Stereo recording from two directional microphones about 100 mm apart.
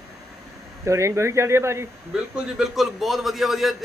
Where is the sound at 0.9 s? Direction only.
30° right (ahead or behind).